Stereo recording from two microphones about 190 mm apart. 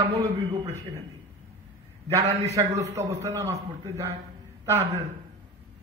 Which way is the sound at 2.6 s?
20° right (ahead or behind).